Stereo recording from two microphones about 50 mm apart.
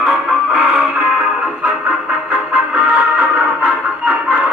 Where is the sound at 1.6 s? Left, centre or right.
Right.